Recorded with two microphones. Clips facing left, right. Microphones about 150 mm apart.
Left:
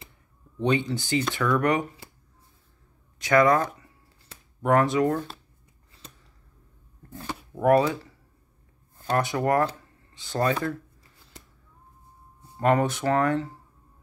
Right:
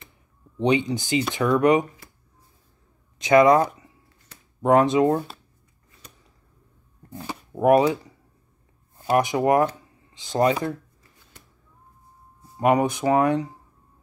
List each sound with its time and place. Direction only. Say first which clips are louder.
0.6 s speech: right 3 dB; 15° right (ahead or behind)
3.2 s speech: right 4 dB; 20° right (ahead or behind)
7.5 s speech: right 3 dB; 15° right (ahead or behind)
12.5 s speech: right 2 dB; 15° right (ahead or behind)